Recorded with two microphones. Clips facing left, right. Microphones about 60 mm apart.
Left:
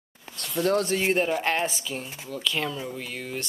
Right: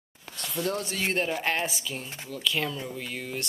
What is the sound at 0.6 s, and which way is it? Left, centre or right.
Speech, left.